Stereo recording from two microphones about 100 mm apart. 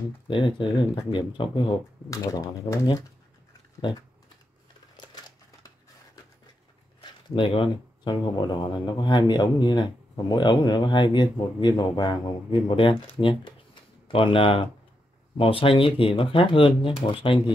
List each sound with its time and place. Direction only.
0.3 s speech: 55° left (ahead or behind)
2.0 s speech: 35° left (ahead or behind)
5.0 s typewriter: 45° left (ahead or behind)
7.0 s speech: 55° left (ahead or behind)
14.0 s speech: 60° left (ahead or behind)